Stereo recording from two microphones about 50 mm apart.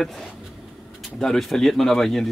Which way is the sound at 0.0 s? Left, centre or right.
Centre.